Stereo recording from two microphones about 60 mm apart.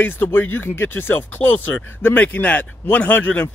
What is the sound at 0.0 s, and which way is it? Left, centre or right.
A man's voice, left.